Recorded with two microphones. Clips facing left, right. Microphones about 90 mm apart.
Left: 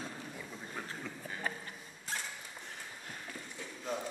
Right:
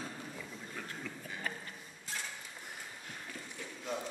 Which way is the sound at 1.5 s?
30° left (ahead or behind).